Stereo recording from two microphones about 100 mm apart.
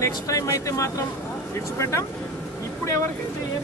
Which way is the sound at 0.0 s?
30° left (ahead or behind).